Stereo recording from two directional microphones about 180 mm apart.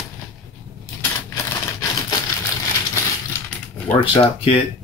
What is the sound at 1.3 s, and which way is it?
Typewriter, 20° left (ahead or behind).